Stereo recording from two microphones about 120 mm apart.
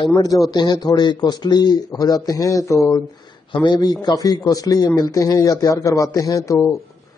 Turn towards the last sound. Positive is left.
turn(degrees=20)  # may be behind; listen again after turning